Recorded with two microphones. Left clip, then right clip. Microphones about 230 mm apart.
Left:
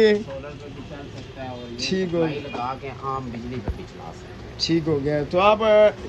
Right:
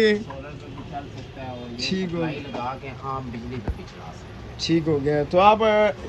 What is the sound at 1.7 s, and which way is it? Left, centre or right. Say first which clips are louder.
Speech: left 2 dB; left.